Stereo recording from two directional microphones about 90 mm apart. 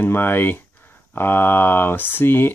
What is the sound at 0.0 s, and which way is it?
Speech, 25° left (ahead or behind).